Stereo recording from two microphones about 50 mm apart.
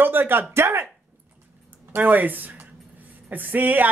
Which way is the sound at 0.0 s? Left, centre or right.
Right.